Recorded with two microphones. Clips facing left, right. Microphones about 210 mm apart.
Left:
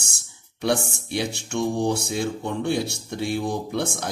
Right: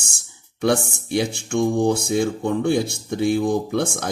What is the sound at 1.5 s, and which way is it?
Speech, 50° right (ahead or behind).